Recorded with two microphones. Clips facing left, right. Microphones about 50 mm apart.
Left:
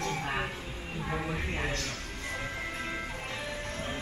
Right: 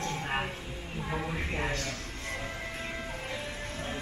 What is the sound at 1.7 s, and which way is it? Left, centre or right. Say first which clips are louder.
Speech: right 1 dB; left.